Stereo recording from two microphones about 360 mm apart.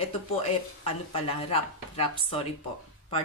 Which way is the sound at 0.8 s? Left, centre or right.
Centre.